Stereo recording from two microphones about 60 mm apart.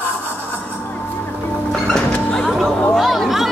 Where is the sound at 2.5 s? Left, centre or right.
Centre.